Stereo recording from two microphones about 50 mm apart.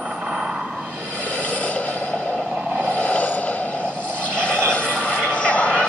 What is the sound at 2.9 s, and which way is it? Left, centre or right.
Vehicle, left.